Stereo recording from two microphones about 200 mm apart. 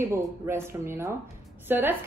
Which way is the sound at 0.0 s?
10° right (ahead or behind).